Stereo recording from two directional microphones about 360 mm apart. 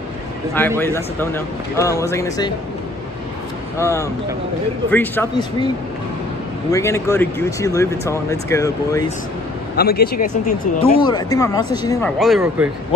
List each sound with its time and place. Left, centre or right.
0.6 s speech: centre
3.7 s speech: centre
6.7 s speech: centre
9.8 s speech: left
10.8 s speech: centre